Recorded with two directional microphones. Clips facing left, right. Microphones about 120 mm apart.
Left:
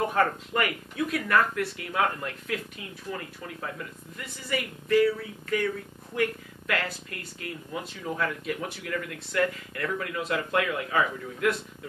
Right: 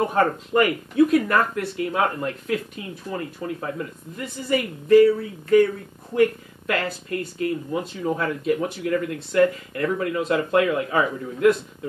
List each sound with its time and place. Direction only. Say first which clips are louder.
0.1 s speech: right 5 dB; 30° right (ahead or behind)
6.7 s speech: right 6 dB; 35° right (ahead or behind)